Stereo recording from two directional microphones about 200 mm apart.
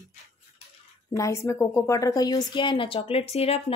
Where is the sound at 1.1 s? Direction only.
15° left (ahead or behind).